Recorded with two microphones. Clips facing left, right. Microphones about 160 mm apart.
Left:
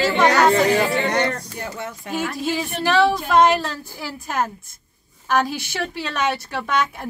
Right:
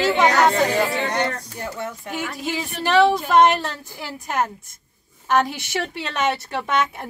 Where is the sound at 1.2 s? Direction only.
90° left.